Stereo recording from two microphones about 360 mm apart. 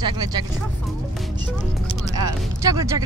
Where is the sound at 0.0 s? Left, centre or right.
Centre.